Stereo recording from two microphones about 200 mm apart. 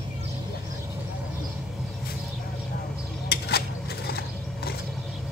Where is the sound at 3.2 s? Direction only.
55° left (ahead or behind).